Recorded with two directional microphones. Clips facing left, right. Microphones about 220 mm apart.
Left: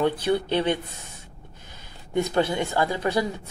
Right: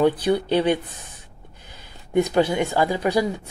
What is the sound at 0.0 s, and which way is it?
Speech, 15° right (ahead or behind).